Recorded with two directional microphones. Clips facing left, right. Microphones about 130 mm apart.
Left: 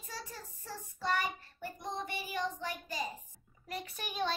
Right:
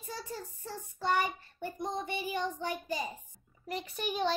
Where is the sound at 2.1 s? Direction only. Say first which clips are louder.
Right 3 dB; 25° right (ahead or behind).